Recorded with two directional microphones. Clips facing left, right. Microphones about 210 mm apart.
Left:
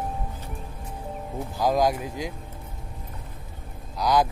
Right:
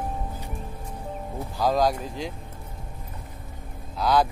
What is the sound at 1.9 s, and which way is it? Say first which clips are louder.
Speech: left 1 dB; 5° left (ahead or behind).